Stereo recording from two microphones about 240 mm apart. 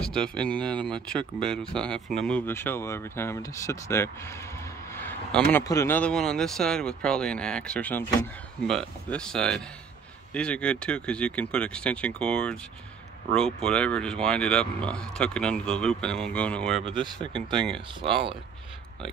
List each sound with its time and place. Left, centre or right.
0.0 s speech: centre
17.2 s speech: centre
17.6 s speech: centre